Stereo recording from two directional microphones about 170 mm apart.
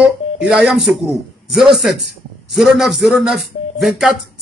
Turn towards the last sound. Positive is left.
turn(degrees=0)  # may be behind; listen again after turning